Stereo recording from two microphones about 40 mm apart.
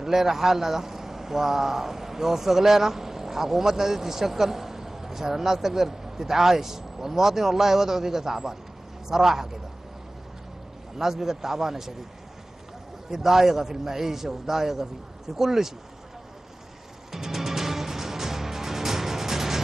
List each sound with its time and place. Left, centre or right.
0.0 s speech: centre
11.0 s speech: centre
13.1 s speech: centre
17.1 s music: centre